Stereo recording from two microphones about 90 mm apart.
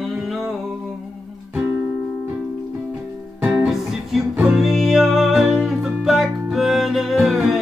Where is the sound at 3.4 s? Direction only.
Centre (ahead or behind).